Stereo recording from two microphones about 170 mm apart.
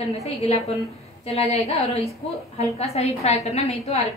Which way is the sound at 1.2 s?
35° left (ahead or behind).